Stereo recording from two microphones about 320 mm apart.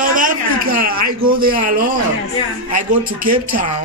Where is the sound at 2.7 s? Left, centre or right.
Right.